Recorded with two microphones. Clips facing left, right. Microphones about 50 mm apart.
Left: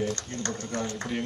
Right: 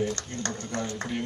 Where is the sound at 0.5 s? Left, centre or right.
Right.